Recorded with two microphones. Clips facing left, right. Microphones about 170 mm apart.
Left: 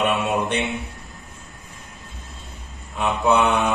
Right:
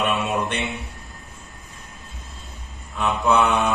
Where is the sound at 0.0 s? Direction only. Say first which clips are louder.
Left 2 dB; 20° left (ahead or behind).